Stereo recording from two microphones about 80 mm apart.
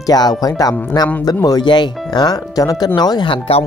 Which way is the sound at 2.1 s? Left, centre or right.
Left.